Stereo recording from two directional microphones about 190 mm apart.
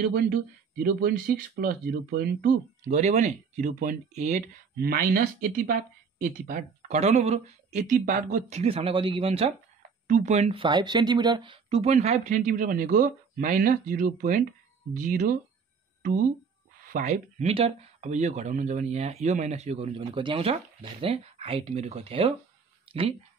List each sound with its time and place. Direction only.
0.1 s speech: 50° right (ahead or behind)
2.9 s speech: 40° right (ahead or behind)
4.7 s speech: 50° right (ahead or behind); by 22.3 s 30° right (ahead or behind)